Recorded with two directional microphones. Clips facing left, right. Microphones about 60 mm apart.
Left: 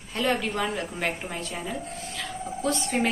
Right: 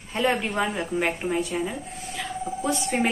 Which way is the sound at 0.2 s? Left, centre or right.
Right.